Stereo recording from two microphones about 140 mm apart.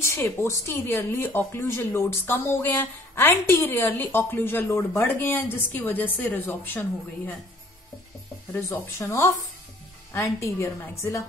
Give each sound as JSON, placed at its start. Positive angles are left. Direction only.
{"t": 0.0, "sound": "speech", "side_deg": 20}
{"t": 8.6, "sound": "a woman's voice", "side_deg": 20}